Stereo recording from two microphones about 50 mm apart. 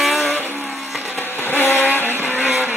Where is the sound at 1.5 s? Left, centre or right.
Left.